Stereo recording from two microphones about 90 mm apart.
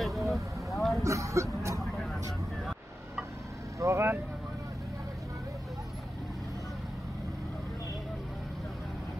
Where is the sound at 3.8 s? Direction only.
30° right (ahead or behind).